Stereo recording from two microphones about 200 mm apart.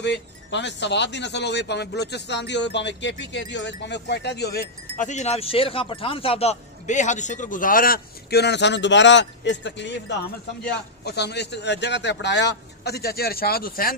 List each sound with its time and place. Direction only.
0.0 s speech: 60° left (ahead or behind)
5.0 s a man's voice: 35° left (ahead or behind)